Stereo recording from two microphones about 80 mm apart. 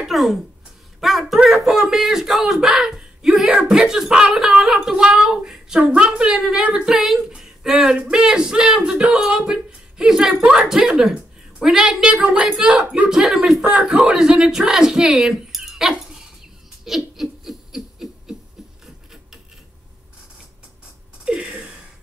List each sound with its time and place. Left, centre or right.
0.0 s a sound: centre
1.0 s speech: centre
16.8 s laughter: centre
21.3 s gasp: centre